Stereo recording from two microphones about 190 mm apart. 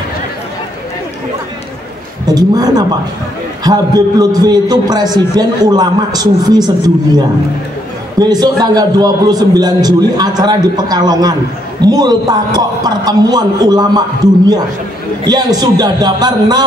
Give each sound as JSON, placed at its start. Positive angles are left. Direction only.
{"t": 2.2, "sound": "a man's voice", "side_deg": -20}
{"t": 8.2, "sound": "a man's voice", "side_deg": -20}